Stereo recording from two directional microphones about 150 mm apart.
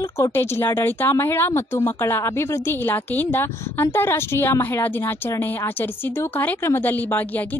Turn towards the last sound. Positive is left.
turn(degrees=10)  # may be behind; listen again after turning